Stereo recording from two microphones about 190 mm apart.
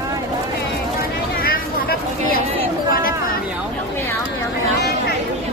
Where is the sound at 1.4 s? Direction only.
50° left (ahead or behind).